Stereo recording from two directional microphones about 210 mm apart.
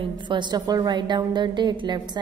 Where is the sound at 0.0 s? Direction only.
20° right (ahead or behind).